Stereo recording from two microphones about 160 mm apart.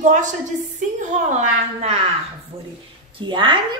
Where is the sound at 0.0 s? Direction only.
50° right (ahead or behind).